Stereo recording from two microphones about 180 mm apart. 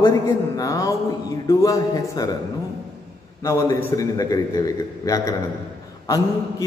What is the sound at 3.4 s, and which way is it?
A man's voice, 15° left (ahead or behind).